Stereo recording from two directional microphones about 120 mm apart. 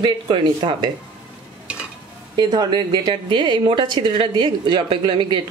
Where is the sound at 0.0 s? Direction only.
40° right (ahead or behind).